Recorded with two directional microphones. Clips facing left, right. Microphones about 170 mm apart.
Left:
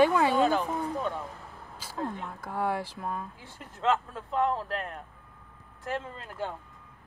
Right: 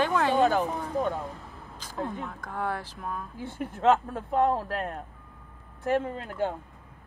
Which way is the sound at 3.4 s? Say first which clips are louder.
Right 5 dB; 55° right (ahead or behind).